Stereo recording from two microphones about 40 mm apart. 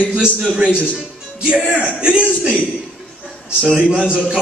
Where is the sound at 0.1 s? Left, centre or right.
Right.